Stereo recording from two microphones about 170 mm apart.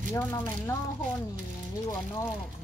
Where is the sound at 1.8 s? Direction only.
20° left (ahead or behind).